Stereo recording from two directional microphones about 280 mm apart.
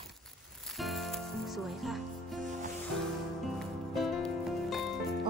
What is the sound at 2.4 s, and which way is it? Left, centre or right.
Music, right.